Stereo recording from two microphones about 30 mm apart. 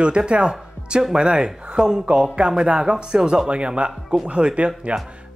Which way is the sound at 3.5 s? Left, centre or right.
Right.